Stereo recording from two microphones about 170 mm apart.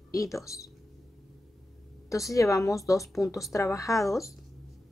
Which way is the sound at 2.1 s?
20° left (ahead or behind).